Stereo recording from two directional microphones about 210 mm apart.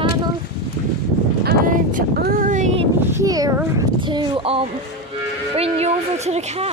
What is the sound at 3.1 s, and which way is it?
Speech, 15° right (ahead or behind).